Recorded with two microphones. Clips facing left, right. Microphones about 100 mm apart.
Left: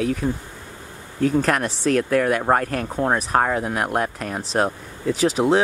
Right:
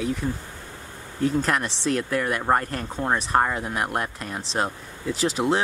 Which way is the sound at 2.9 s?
10° left (ahead or behind).